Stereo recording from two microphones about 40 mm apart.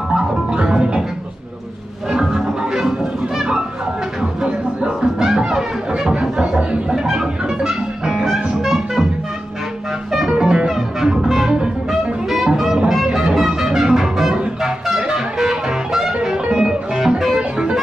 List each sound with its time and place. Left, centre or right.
0.1 s music: centre
2.0 s music: centre
4.2 s music: right
10.1 s music: centre
11.1 s music: centre
17.4 s music: right